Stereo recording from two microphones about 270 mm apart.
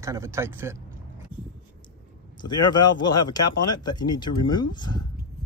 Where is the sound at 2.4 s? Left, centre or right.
Centre.